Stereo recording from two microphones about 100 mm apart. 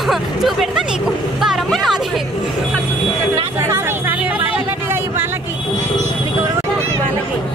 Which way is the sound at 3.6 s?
25° right (ahead or behind).